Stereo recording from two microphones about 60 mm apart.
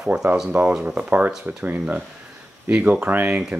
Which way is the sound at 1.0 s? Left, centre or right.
Right.